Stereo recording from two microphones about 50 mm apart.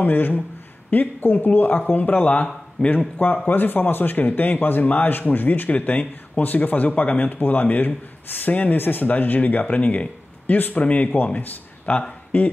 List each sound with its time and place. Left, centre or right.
0.0 s a man's voice: left